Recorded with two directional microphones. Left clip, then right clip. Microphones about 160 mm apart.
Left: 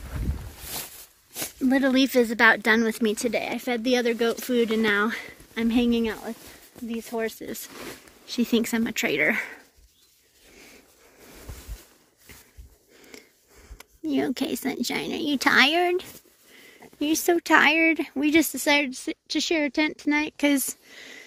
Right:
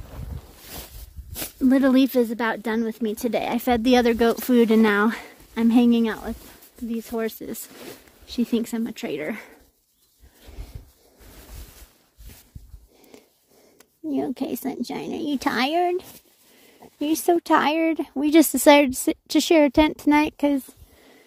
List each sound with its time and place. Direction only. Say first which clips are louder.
0.7 s a sound: left 4 dB; 40° right (ahead or behind)
1.7 s speech: right 3 dB; 60° right (ahead or behind)
2.0 s speech: even; 35° right (ahead or behind)
2.3 s speech: left 7 dB; 25° right (ahead or behind)
3.3 s speech: right 4 dB; 55° right (ahead or behind); by 7.4 s 70° right (ahead or behind)
8.3 s speech: left 1 dB; 25° right (ahead or behind); by 9.6 s 10° right (ahead or behind)
13.1 s a sound: left 3 dB; 20° right (ahead or behind)
14.0 s speech: left 1 dB; 15° right (ahead or behind)
18.5 s speech: right 8 dB; 65° right (ahead or behind)
20.4 s a sound: even; 15° right (ahead or behind)